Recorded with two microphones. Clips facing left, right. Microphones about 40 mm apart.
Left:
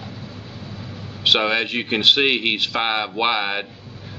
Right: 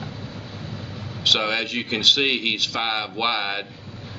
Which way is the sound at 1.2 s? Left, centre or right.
Centre.